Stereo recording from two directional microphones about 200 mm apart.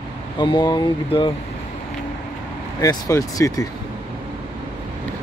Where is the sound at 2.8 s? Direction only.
15° left (ahead or behind).